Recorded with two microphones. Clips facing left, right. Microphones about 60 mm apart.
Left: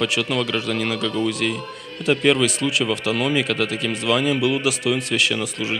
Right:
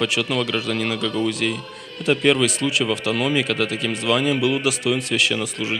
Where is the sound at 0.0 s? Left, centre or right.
Centre.